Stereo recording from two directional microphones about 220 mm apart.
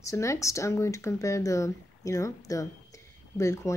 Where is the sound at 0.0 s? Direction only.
15° left (ahead or behind).